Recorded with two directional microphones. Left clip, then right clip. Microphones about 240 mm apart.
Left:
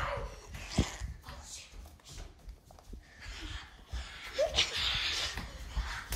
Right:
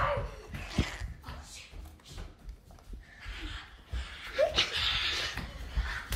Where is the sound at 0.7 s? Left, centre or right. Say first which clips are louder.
Even; centre.